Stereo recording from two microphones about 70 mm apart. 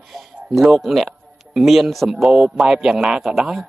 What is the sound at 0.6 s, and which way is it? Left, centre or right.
A man's voice, centre.